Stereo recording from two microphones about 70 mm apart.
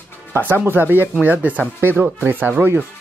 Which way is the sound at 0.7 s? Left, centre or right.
Right.